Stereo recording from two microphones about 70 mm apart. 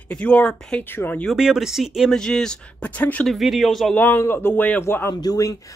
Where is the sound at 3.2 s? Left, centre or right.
Centre.